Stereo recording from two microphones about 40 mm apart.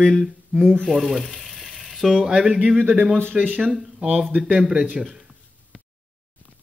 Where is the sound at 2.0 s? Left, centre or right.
Centre.